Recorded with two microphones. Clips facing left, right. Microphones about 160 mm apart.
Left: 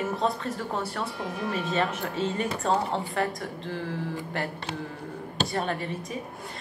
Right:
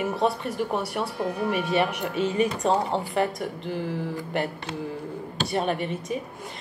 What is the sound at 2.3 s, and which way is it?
Speech, 15° right (ahead or behind).